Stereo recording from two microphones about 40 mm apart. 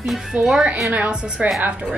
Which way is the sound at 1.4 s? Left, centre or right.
Right.